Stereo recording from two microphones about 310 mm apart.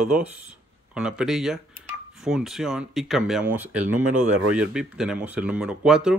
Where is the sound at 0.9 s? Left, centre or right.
Centre.